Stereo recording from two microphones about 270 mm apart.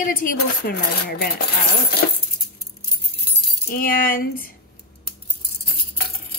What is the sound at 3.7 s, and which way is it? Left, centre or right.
Speech, left.